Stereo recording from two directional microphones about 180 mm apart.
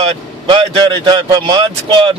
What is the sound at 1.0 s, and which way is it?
Speech, 25° right (ahead or behind).